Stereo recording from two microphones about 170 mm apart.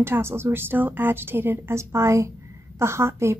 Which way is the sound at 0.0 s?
15° right (ahead or behind).